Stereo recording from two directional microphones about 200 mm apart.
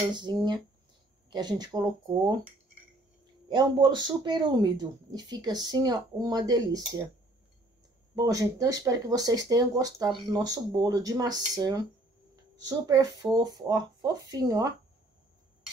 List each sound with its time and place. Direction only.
0.1 s speech: 20° right (ahead or behind)
3.4 s speech: 20° right (ahead or behind)
8.2 s speech: 15° right (ahead or behind)